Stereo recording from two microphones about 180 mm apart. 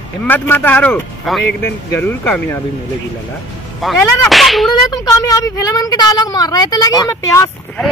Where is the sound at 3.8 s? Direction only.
Centre (ahead or behind).